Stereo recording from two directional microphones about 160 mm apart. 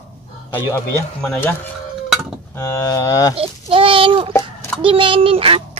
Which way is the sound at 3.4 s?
35° right (ahead or behind).